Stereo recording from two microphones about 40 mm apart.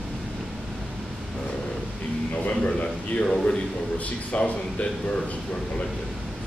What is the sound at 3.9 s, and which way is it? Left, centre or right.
Speech, left.